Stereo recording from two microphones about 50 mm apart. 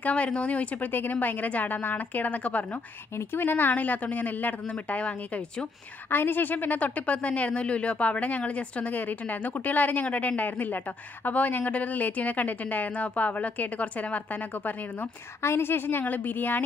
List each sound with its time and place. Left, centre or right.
0.0 s a woman's voice: left
3.2 s a woman's voice: left
6.0 s a woman's voice: left
15.4 s a woman's voice: left